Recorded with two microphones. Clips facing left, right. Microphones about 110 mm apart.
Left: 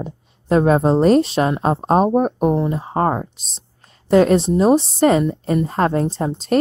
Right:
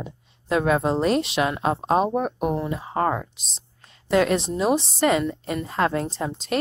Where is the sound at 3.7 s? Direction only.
40° left (ahead or behind).